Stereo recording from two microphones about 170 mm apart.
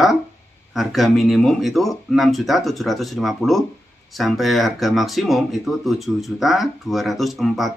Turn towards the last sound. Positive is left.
turn(degrees=0)  # may be behind; listen again after turning